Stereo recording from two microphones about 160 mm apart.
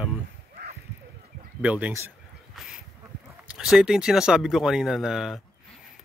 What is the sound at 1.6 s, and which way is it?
Speech, 10° right (ahead or behind).